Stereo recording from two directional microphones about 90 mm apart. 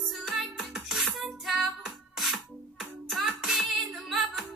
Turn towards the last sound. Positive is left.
turn(degrees=0)  # may be behind; listen again after turning